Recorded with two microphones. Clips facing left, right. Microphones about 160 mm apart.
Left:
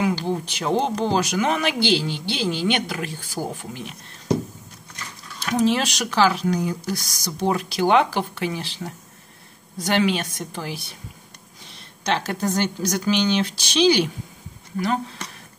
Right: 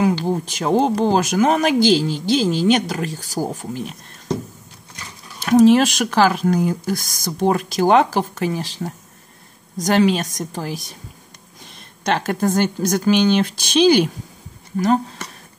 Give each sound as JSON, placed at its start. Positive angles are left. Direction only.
{"t": 0.0, "sound": "speech", "side_deg": -40}
{"t": 5.4, "sound": "speech", "side_deg": -45}
{"t": 12.0, "sound": "speech", "side_deg": -50}